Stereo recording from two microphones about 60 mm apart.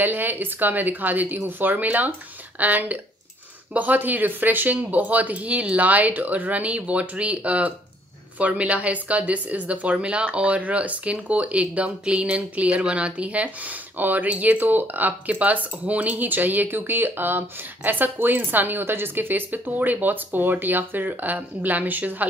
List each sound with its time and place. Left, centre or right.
0.0 s speech: right